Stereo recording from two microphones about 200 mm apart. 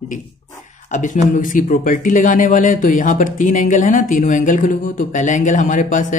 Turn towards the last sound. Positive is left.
turn(degrees=40)  # may be behind; listen again after turning